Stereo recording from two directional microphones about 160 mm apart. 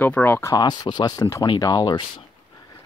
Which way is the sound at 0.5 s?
25° left (ahead or behind).